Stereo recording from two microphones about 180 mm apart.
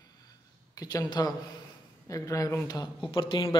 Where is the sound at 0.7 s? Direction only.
20° left (ahead or behind).